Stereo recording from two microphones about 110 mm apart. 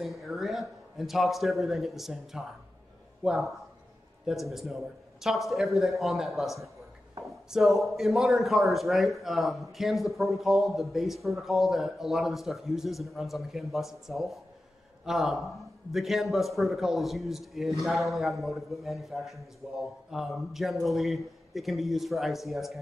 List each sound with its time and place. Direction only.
0.0 s a man's voice: centre (ahead or behind)